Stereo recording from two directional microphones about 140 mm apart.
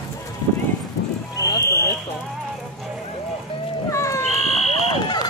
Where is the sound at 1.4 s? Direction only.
20° left (ahead or behind).